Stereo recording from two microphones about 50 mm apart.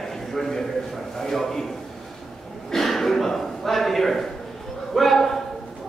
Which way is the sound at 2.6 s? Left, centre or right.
Centre.